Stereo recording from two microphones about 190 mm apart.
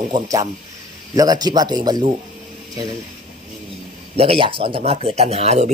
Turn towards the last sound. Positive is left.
turn(degrees=-35)  # may be behind; listen again after turning